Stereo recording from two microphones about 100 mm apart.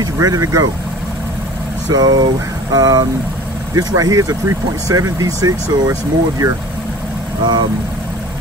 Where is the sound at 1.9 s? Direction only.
40° right (ahead or behind).